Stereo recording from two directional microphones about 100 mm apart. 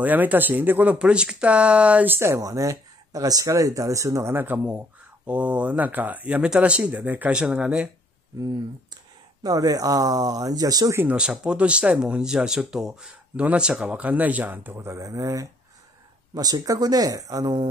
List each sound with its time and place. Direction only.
0.0 s speech: 15° right (ahead or behind)
9.4 s speech: 40° right (ahead or behind)
11.0 s speech: 10° right (ahead or behind); by 17.6 s 35° right (ahead or behind)